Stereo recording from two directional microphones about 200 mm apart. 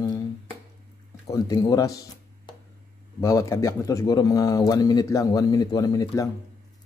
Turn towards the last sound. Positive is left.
turn(degrees=15)  # may be behind; listen again after turning